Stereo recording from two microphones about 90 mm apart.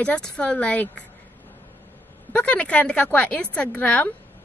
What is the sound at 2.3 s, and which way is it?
Speech, 15° left (ahead or behind).